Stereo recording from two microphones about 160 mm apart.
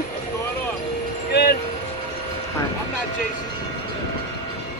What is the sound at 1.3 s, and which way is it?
Music, 75° left (ahead or behind).